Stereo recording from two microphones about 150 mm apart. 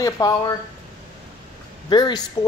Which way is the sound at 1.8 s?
30° left (ahead or behind).